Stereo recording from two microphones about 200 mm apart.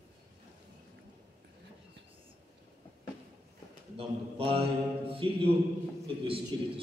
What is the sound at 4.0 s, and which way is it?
A man's voice, 30° right (ahead or behind).